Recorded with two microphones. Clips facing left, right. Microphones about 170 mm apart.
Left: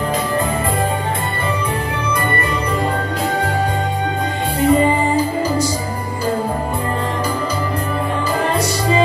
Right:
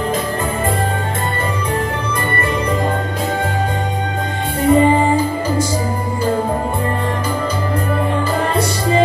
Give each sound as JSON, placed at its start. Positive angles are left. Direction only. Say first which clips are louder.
{"t": 4.6, "sound": "music", "louder": "right 3 dB", "side_deg": -50}